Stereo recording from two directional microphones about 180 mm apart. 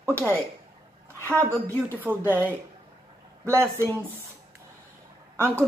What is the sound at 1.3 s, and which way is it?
Speech, 15° right (ahead or behind).